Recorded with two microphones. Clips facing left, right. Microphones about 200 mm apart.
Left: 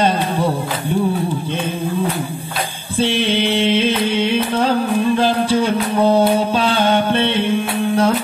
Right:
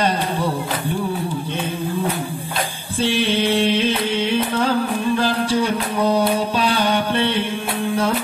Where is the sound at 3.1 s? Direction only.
20° left (ahead or behind).